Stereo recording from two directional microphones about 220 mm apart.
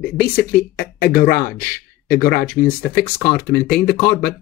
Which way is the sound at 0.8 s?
40° left (ahead or behind).